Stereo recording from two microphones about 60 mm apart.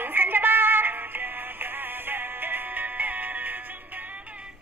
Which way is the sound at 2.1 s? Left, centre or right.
Right.